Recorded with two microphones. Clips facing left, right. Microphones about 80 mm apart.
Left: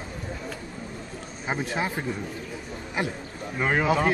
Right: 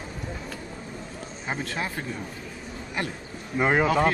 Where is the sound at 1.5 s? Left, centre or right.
Centre.